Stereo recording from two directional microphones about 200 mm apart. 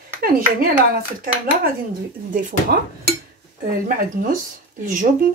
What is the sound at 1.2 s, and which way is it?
Speech, 45° right (ahead or behind).